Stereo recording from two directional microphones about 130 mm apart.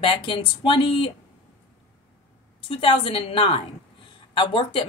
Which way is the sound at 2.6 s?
45° left (ahead or behind).